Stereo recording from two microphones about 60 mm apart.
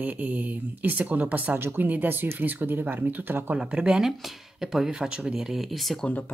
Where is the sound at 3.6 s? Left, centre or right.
Centre.